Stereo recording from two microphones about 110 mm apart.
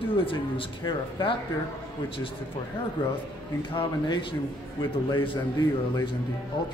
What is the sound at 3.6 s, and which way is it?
Speech, 45° left (ahead or behind).